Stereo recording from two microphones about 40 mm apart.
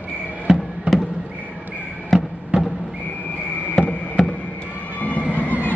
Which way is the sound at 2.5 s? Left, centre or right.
Right.